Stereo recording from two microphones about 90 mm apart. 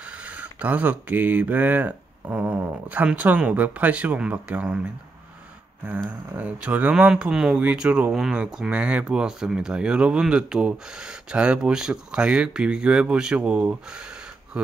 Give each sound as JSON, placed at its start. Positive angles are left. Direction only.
{"t": 0.0, "sound": "speech", "side_deg": -15}
{"t": 6.0, "sound": "speech", "side_deg": -15}